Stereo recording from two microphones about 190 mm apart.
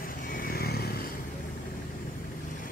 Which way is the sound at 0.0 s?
45° left (ahead or behind).